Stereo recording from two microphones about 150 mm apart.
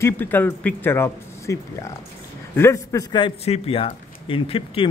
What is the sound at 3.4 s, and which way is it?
Speech, 40° left (ahead or behind).